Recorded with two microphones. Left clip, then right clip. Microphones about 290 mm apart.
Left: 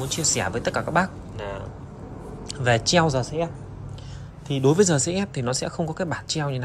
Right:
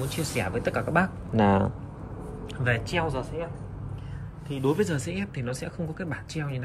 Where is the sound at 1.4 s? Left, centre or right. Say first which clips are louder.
Right 11 dB; centre.